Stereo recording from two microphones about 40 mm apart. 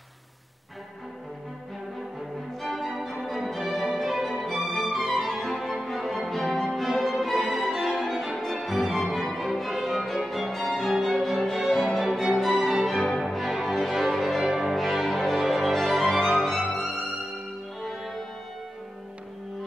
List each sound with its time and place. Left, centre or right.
2.6 s music: centre
7.0 s violin: centre
8.4 s music: centre